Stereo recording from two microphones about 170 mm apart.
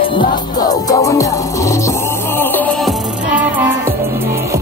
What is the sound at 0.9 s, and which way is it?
Music, 20° left (ahead or behind).